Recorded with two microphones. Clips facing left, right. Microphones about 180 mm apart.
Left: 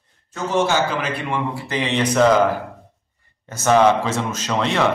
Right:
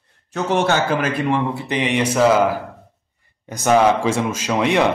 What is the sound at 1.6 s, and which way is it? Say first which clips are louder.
A man's voice: right 2 dB; 15° right (ahead or behind).